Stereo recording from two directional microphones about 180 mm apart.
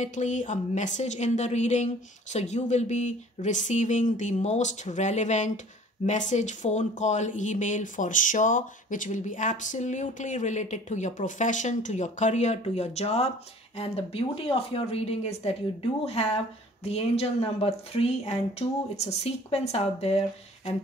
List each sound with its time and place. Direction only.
0.0 s a woman's voice: 40° left (ahead or behind)